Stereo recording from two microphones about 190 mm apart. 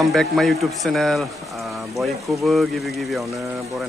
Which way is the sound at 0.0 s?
Centre (ahead or behind).